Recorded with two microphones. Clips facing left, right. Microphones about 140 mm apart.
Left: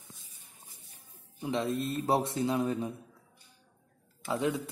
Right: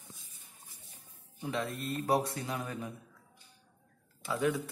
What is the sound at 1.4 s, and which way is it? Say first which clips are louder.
Speech: left 5 dB; 20° left (ahead or behind).